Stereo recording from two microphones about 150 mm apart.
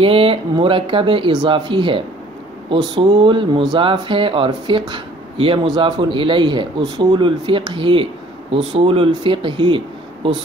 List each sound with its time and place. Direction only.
0.0 s speech: 40° right (ahead or behind)